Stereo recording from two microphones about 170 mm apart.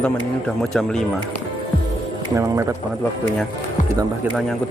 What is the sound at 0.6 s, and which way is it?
Speech, 5° left (ahead or behind).